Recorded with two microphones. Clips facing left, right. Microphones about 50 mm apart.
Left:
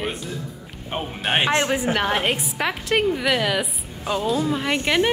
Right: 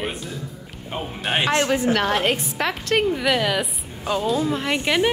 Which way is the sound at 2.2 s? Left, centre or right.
Centre.